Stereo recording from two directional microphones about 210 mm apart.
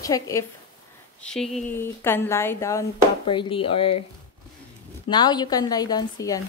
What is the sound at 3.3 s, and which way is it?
Speech, 25° left (ahead or behind).